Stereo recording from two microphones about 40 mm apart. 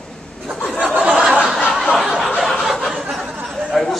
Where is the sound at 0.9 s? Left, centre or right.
Right.